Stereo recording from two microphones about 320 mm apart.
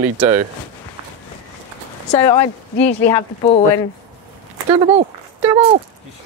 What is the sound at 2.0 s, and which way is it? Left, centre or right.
Speech, centre.